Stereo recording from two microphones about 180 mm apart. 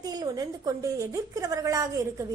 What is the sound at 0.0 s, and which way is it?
A woman's voice, 20° right (ahead or behind).